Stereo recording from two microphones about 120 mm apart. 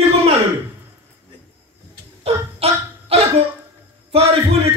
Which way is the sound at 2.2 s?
55° right (ahead or behind).